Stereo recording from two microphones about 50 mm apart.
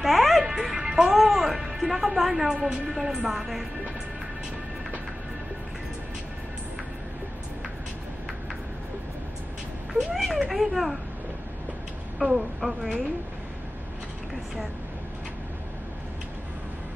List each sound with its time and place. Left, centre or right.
0.0 s music: centre
0.4 s music: centre
1.1 s music: centre
2.4 s speech: centre
9.9 s speech: centre
12.2 s speech: centre